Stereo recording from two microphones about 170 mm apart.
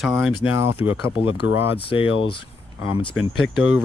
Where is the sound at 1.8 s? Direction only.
30° left (ahead or behind).